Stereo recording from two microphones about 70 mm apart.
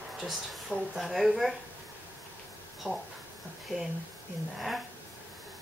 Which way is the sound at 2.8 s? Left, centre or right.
Centre.